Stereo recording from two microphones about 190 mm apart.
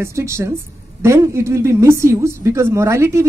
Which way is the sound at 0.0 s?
15° right (ahead or behind).